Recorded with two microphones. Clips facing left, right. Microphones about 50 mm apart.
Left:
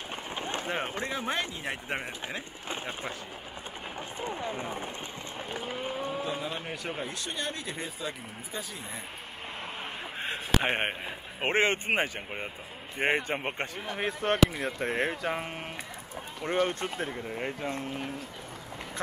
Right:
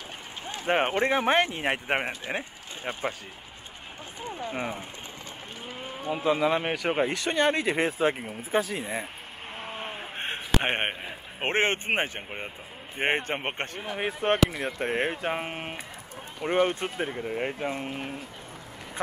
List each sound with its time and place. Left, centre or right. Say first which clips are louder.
0.7 s speech: right 13 dB; right
2.0 s speech: right 6 dB; right
6.2 s speech: right 10 dB; right
10.6 s speech: right 1 dB; right
11.4 s speech: right 1 dB; right
13.7 s speech: right 2 dB; centre
14.5 s speech: right 1 dB; centre
14.8 s speech: right 2 dB; right